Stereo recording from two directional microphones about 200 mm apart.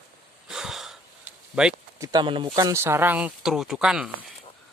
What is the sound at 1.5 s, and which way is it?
Speech, 5° right (ahead or behind).